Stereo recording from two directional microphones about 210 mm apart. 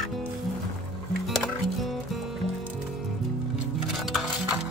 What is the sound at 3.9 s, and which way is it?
Music, centre (ahead or behind).